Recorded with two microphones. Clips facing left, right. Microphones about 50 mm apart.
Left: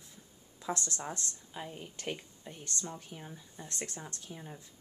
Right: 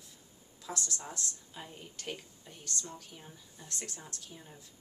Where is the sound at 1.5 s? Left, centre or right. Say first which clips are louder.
Left 4 dB; centre.